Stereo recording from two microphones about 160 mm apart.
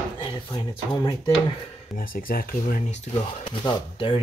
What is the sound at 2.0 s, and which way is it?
Speech, 65° left (ahead or behind).